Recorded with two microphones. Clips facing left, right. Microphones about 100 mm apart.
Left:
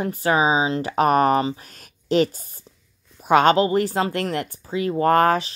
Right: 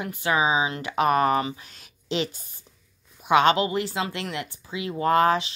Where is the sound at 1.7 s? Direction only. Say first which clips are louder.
Left 9 dB; 45° left (ahead or behind).